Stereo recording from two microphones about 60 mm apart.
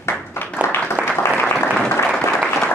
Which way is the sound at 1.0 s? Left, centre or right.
Right.